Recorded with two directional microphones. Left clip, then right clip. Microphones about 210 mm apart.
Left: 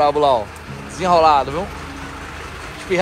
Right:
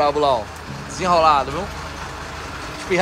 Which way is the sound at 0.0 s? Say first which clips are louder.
Left 3 dB; 10° right (ahead or behind).